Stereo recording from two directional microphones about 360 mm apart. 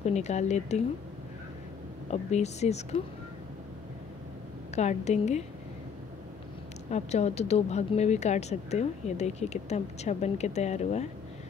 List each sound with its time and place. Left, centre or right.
0.0 s speech: centre
2.3 s speech: centre
4.7 s speech: centre
6.9 s speech: centre